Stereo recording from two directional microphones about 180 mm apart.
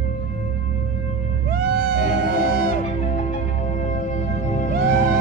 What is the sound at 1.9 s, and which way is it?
Music, 40° left (ahead or behind).